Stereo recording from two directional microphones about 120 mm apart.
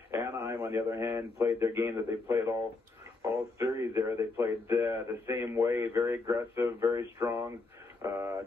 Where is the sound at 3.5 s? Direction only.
25° right (ahead or behind).